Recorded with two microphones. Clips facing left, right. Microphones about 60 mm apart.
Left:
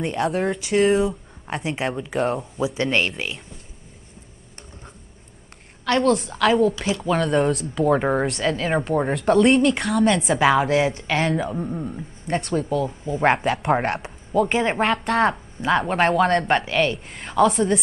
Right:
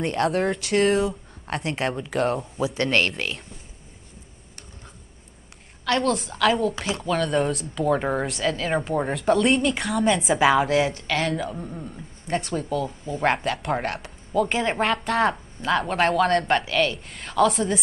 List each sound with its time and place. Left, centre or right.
0.0 s speech: centre
2.6 s speech: centre
5.9 s speech: centre
12.3 s speech: centre
13.2 s speech: centre
15.6 s speech: centre